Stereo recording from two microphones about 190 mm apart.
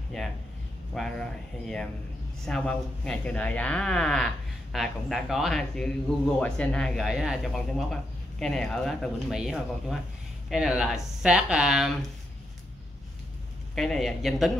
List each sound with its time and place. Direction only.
0.1 s speech: centre (ahead or behind)
13.7 s speech: centre (ahead or behind)